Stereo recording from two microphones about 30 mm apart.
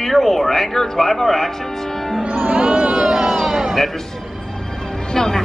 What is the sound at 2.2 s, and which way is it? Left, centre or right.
Music, right.